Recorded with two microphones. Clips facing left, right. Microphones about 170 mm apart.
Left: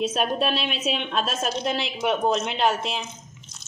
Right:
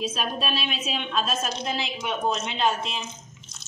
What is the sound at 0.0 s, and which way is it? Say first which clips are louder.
A woman's voice: left 5 dB; 60° left (ahead or behind).